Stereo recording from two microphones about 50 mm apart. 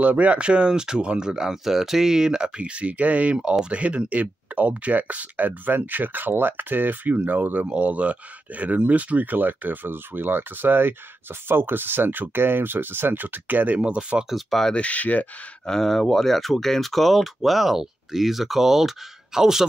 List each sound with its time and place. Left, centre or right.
0.0 s speech: right
13.7 s speech: centre
14.3 s speech: centre
14.7 s speech: left
15.6 s speech: centre